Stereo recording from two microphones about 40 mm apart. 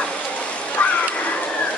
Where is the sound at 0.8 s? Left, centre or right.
Left.